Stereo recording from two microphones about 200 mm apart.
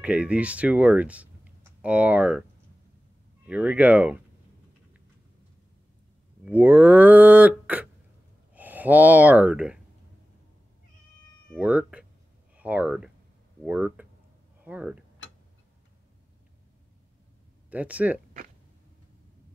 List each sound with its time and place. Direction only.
0.0 s speech: 5° right (ahead or behind)
3.4 s cattle: 5° right (ahead or behind)
6.4 s cattle: 10° right (ahead or behind)
8.5 s speech: 10° right (ahead or behind)
11.5 s speech: 5° right (ahead or behind)
13.7 s cattle: 10° right (ahead or behind)
14.6 s a sound: 5° right (ahead or behind)
17.6 s cattle: 5° right (ahead or behind)